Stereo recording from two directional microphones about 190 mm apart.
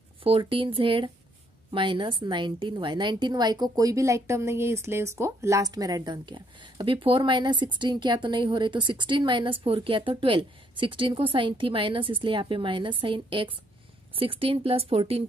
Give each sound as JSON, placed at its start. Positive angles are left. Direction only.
{"t": 0.2, "sound": "a woman's voice", "side_deg": -30}